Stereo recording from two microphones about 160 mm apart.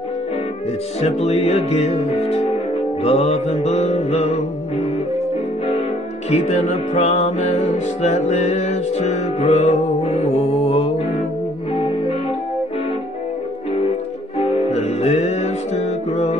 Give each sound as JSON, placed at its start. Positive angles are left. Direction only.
{"t": 1.2, "sound": "music", "side_deg": 45}
{"t": 6.3, "sound": "music", "side_deg": 45}
{"t": 14.4, "sound": "music", "side_deg": 40}